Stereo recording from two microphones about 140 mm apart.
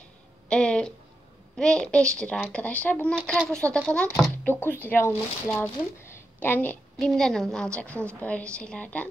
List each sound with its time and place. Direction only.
0.5 s music: 5° left (ahead or behind)
1.6 s a woman's voice: 5° left (ahead or behind)
6.1 s a sound: 15° left (ahead or behind)
7.0 s a woman's voice: 5° left (ahead or behind)